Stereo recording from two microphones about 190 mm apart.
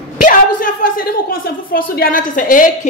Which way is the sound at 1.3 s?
50° left (ahead or behind).